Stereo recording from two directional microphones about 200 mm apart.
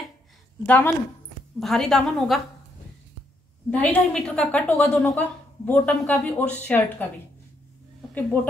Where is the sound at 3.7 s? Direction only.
5° left (ahead or behind).